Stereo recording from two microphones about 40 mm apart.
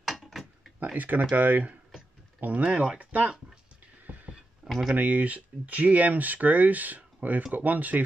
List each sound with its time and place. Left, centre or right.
0.0 s mechanisms: centre
0.9 s speech: right
2.7 s speech: right
4.6 s a sound: centre
4.9 s speech: right